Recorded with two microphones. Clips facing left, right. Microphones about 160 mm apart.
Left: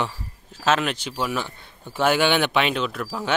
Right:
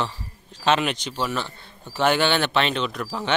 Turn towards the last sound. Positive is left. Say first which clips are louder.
# even
turn(degrees=5)  # may be behind; listen again after turning